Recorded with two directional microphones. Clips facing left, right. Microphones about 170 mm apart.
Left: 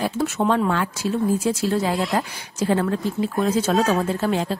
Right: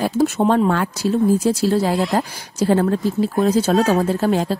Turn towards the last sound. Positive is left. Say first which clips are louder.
# right 4 dB
turn(degrees=-40)  # may be behind; listen again after turning